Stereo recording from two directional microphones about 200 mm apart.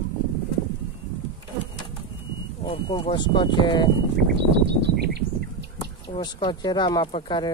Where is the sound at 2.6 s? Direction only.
25° left (ahead or behind).